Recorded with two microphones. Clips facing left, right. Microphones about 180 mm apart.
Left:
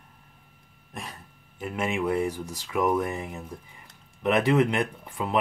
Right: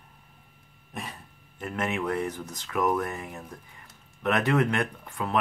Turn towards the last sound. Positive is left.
turn(degrees=15)  # may be behind; listen again after turning